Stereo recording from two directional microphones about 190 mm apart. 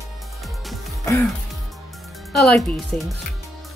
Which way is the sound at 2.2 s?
Centre (ahead or behind).